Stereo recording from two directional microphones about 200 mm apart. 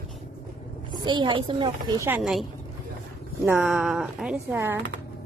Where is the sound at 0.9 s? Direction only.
20° right (ahead or behind).